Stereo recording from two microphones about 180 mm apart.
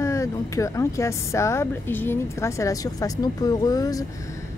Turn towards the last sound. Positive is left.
turn(degrees=20)  # may be behind; listen again after turning